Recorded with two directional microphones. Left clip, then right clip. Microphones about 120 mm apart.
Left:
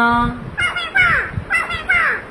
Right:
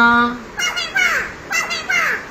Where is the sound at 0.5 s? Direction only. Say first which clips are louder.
Left 4 dB; 25° left (ahead or behind).